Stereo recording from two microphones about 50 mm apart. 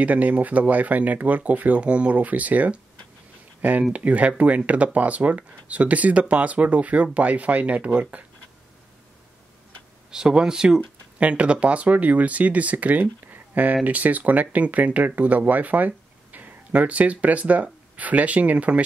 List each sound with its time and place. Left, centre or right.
0.0 s speech: right
3.9 s speech: right
10.1 s speech: centre
11.1 s speech: right